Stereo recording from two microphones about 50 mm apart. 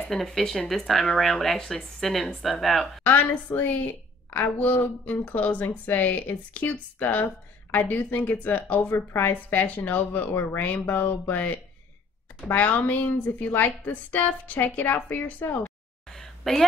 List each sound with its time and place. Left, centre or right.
0.0 s speech: centre
3.5 s speech: left
4.3 s a woman's voice: left
16.1 s a sound: centre